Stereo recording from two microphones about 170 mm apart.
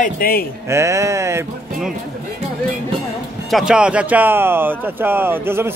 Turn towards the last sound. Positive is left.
turn(degrees=-15)  # may be behind; listen again after turning